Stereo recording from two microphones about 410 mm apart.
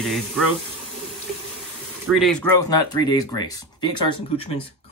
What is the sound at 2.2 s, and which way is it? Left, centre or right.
Speech, centre.